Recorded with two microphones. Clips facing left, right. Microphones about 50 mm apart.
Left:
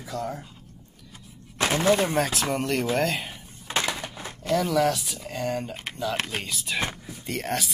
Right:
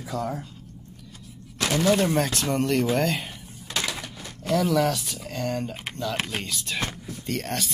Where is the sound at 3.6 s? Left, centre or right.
Left.